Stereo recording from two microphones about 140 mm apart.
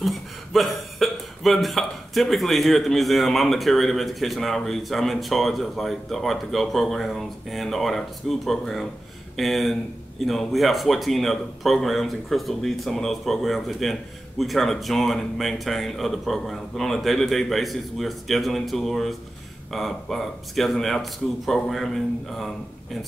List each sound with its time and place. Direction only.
0.0 s speech: centre (ahead or behind)